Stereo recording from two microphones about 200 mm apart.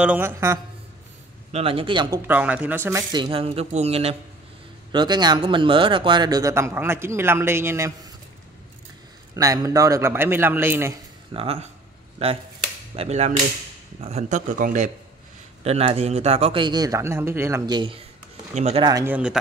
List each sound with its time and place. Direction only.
0.0 s a man's voice: 10° right (ahead or behind)
1.5 s speech: 25° right (ahead or behind)
9.3 s a man's voice: 15° right (ahead or behind)
11.3 s speech: 30° right (ahead or behind)
12.9 s speech: 30° right (ahead or behind)
15.6 s speech: 30° right (ahead or behind)
19.0 s speech: 5° right (ahead or behind)